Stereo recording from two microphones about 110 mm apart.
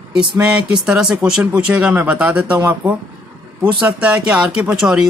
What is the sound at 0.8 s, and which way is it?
Speech, 5° right (ahead or behind).